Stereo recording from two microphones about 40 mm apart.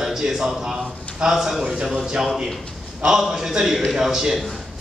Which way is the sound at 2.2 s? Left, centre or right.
Centre.